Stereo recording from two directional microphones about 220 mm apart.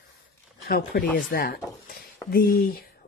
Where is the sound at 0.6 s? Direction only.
45° left (ahead or behind).